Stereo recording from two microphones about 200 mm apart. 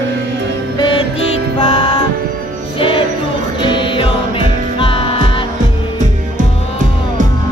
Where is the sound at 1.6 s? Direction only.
20° left (ahead or behind).